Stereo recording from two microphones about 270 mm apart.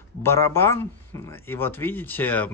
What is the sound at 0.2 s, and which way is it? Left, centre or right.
Speech, centre.